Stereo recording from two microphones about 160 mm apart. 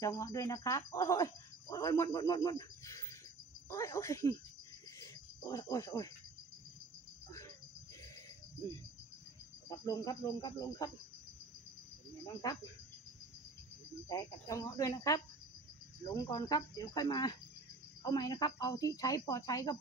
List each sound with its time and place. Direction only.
0.0 s speech: 20° left (ahead or behind)
5.0 s cricket: 20° left (ahead or behind)
9.7 s speech: 20° left (ahead or behind)
12.3 s speech: 20° left (ahead or behind)
14.0 s speech: 20° left (ahead or behind)
16.2 s speech: 20° left (ahead or behind)